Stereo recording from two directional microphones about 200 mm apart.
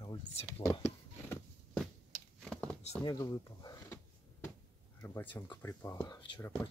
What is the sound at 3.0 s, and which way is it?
Speech, 20° left (ahead or behind).